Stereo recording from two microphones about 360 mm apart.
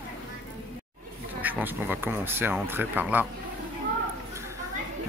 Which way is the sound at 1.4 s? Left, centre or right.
Centre.